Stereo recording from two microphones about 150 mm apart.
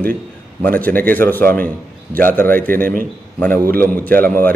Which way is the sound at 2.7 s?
70° right (ahead or behind).